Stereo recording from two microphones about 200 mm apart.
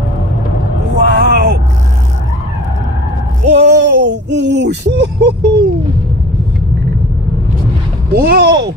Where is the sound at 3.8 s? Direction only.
60° right (ahead or behind).